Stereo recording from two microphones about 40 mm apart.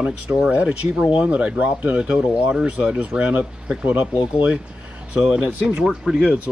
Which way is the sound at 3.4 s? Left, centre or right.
Centre.